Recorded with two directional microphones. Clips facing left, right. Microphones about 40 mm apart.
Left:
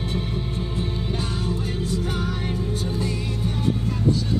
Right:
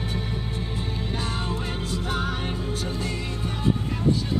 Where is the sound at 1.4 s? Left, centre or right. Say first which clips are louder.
Left 3 dB; right.